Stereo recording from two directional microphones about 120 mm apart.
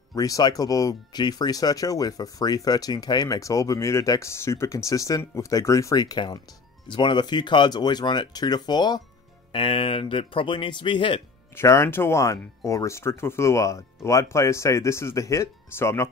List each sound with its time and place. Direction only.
0.1 s speech: 30° left (ahead or behind)
9.5 s speech: 45° left (ahead or behind)
11.5 s speech: 25° left (ahead or behind)